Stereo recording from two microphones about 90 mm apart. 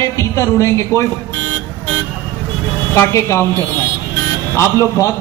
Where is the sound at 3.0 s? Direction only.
35° left (ahead or behind).